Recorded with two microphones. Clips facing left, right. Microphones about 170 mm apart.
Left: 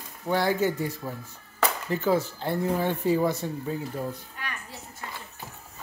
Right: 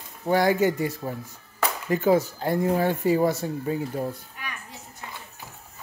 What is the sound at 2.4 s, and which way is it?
Speech, 10° right (ahead or behind).